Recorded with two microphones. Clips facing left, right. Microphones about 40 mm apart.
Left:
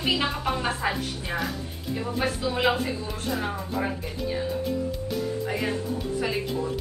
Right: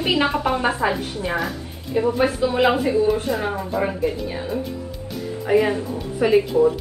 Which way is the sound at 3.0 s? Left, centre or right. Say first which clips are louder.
Right 12 dB; centre.